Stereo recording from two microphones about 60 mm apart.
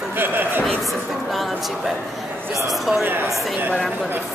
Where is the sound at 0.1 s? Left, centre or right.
Right.